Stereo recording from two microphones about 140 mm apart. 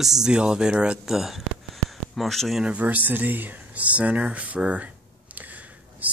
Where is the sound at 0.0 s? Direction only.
5° right (ahead or behind).